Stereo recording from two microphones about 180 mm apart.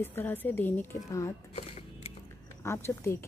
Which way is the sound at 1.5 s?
35° left (ahead or behind).